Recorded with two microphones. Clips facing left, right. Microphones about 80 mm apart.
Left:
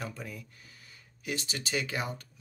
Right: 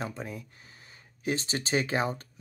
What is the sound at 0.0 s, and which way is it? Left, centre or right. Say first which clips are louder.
Speech: right 4 dB; right.